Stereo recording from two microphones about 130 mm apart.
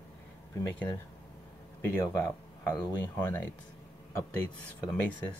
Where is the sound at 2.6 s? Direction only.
20° left (ahead or behind).